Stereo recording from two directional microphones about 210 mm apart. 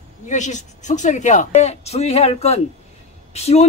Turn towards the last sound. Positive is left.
turn(degrees=30)  # may be behind; listen again after turning